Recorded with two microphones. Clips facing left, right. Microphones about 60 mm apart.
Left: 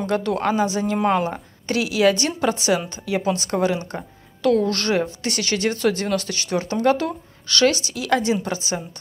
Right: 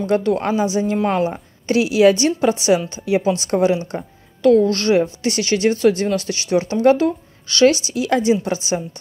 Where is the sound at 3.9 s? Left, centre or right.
Centre.